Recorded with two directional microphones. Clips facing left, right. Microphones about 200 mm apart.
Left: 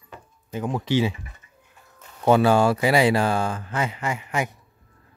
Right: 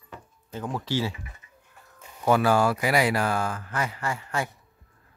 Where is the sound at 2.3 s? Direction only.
25° left (ahead or behind).